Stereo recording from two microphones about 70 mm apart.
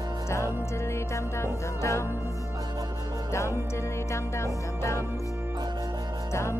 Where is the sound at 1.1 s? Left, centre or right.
Left.